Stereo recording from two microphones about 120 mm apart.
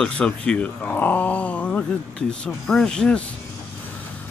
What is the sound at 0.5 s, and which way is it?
Speech, 10° left (ahead or behind).